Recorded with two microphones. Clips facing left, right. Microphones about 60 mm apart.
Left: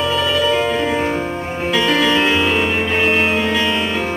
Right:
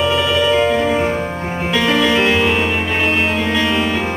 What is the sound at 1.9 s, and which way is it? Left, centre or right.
Music, centre.